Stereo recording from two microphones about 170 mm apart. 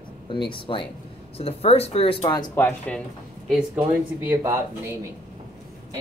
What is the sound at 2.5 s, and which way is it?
Speech, 10° left (ahead or behind).